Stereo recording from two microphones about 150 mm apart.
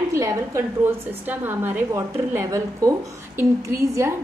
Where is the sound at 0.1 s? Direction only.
20° right (ahead or behind).